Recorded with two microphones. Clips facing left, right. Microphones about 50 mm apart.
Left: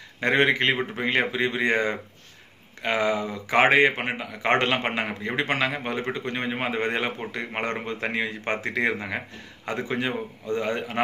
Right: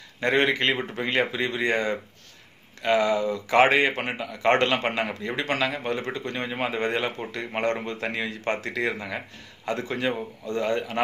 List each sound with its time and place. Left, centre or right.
0.2 s a man's voice: centre